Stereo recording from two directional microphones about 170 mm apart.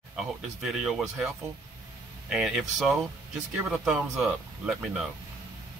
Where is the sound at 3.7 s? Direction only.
5° right (ahead or behind).